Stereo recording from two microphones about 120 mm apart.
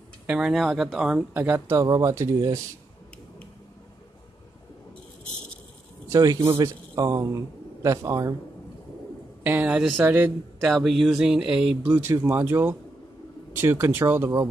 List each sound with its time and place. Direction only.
0.3 s speech: 5° right (ahead or behind)
1.3 s speech: 20° right (ahead or behind)
6.0 s a man's voice: 25° right (ahead or behind)
9.4 s speech: 15° right (ahead or behind)
10.6 s speech: centre (ahead or behind); by 14.5 s 20° right (ahead or behind)